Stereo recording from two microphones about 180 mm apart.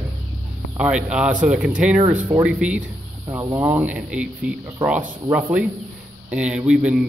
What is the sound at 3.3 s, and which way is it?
Speech, 15° right (ahead or behind).